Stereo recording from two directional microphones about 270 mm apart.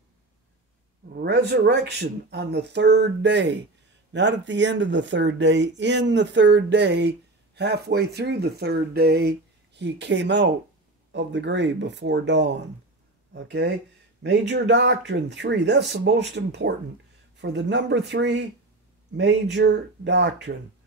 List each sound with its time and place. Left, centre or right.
1.1 s speech: right